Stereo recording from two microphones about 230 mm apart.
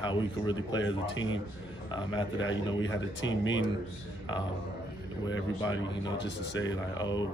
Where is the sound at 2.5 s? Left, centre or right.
Left.